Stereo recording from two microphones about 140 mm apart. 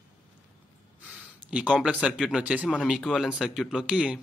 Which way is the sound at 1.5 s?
10° right (ahead or behind).